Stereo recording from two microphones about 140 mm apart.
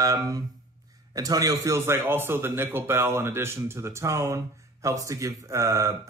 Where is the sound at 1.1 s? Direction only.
25° right (ahead or behind).